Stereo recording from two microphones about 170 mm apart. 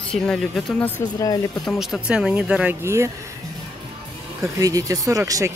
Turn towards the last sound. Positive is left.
turn(degrees=-20)  # may be behind; listen again after turning